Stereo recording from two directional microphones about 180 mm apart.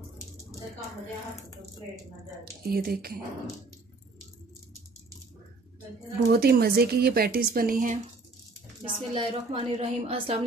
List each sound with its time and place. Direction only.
2.6 s a woman's voice: 55° right (ahead or behind)
6.3 s a woman's voice: 60° right (ahead or behind)
8.8 s a woman's voice: 30° right (ahead or behind)